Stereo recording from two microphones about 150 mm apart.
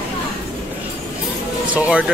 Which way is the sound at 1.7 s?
5° right (ahead or behind).